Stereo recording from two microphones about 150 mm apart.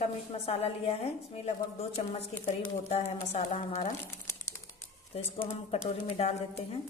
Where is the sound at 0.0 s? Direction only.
45° left (ahead or behind).